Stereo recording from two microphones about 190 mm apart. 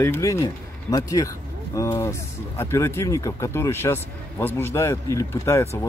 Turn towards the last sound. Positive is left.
turn(degrees=15)  # may be behind; listen again after turning